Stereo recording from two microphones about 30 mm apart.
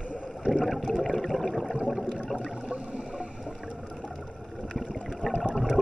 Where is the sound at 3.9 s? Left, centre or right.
Left.